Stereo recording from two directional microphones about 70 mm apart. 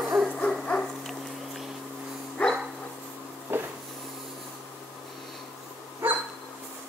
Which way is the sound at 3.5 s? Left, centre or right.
Right.